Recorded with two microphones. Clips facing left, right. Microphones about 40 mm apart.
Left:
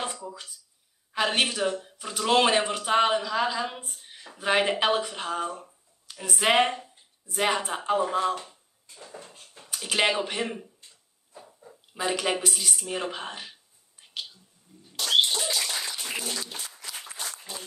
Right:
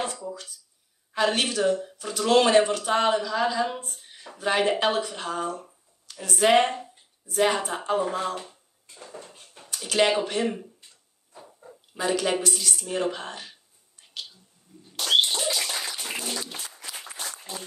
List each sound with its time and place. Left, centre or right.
0.0 s a sound: centre
1.1 s speech: centre
8.4 s a sound: centre
9.7 s speech: centre
11.3 s wild animals: centre
11.9 s speech: centre
15.4 s bird: centre
16.1 s applause: centre